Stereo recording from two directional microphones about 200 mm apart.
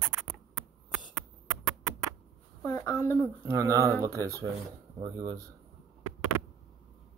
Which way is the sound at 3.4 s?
15° right (ahead or behind).